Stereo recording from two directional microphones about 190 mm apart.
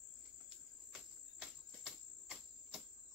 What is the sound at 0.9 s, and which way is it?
Cricket, centre (ahead or behind).